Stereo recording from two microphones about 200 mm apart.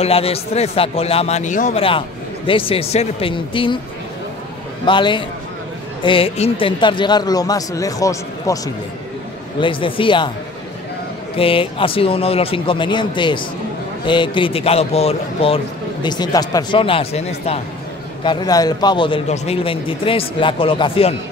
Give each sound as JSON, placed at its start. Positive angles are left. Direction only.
{"t": 0.0, "sound": "a man's voice", "side_deg": 30}
{"t": 4.8, "sound": "a man's voice", "side_deg": 25}
{"t": 9.6, "sound": "a man's voice", "side_deg": 25}
{"t": 11.3, "sound": "a man's voice", "side_deg": 25}